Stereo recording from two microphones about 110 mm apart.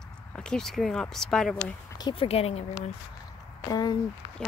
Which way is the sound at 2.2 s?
65° left (ahead or behind).